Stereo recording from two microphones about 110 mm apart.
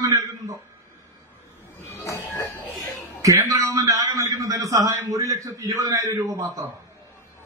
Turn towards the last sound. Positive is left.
turn(degrees=-25)  # may be behind; listen again after turning